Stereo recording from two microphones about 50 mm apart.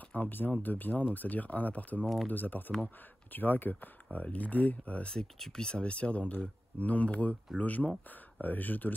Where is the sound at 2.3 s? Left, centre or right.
Left.